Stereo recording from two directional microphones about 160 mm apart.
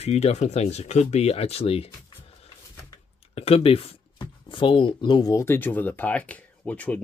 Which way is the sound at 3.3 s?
40° left (ahead or behind).